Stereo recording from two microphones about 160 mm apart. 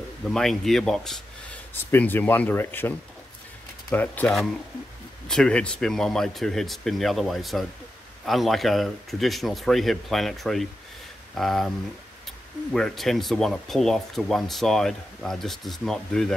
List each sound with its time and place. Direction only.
0.3 s speech: centre (ahead or behind)
1.9 s speech: 10° left (ahead or behind)
3.9 s speech: 10° left (ahead or behind)
12.7 s speech: centre (ahead or behind)